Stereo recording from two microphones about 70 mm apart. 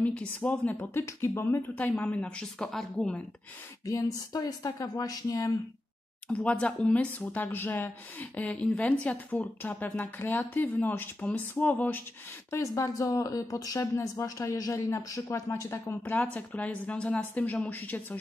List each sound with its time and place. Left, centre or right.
0.0 s speech: centre
0.4 s speech: left
1.0 s speech: left
1.8 s a woman's voice: left; by 3.2 s centre
3.8 s speech: left
6.2 s a woman's voice: centre
7.2 s speech: left
12.4 s speech: left
16.0 s speech: centre